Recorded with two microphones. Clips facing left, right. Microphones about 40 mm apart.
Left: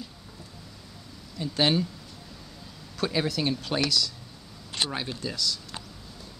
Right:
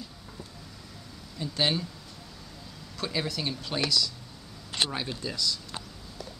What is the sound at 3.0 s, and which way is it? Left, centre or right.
Speech, centre.